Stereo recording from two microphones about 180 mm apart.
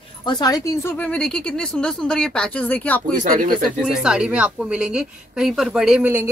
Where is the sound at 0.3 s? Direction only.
20° left (ahead or behind).